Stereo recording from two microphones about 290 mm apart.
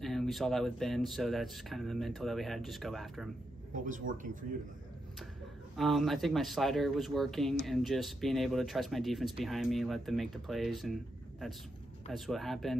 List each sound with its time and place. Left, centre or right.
0.0 s speech: centre
3.7 s a man's voice: right
5.8 s speech: centre